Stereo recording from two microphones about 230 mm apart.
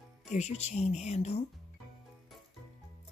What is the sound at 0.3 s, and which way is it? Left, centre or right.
A woman's voice, left.